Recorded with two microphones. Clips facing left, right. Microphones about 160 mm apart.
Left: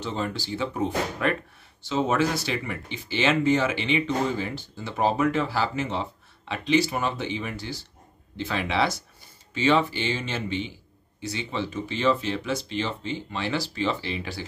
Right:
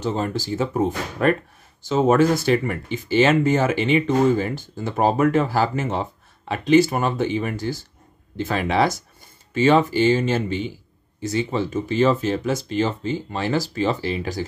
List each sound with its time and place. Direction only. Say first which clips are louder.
0.0 s speech: right 6 dB; 45° right (ahead or behind)